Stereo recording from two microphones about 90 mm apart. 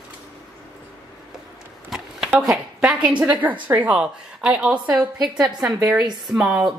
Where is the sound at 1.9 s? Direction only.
5° right (ahead or behind).